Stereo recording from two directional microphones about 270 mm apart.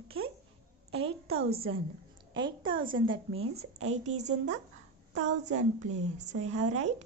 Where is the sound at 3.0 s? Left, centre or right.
Right.